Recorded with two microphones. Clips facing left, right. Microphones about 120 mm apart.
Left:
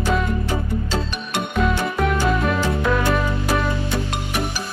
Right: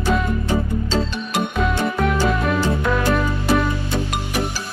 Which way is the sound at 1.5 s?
Centre (ahead or behind).